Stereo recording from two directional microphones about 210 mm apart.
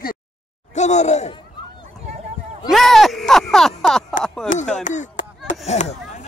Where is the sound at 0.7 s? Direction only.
35° left (ahead or behind).